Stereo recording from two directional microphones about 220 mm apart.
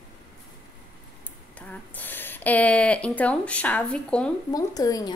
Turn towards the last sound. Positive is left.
turn(degrees=15)  # may be behind; listen again after turning